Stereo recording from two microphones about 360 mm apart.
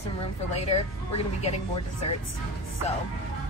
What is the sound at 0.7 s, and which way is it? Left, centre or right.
Speech, left.